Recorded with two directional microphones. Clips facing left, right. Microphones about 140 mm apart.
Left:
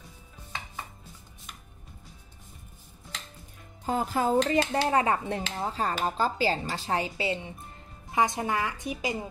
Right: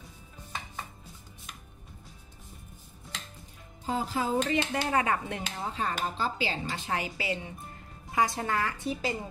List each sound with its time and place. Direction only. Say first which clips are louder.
3.8 s speech: left 3 dB; 50° left (ahead or behind)
4.5 s a woman's voice: left 4 dB; 30° left (ahead or behind); by 9.1 s 15° left (ahead or behind)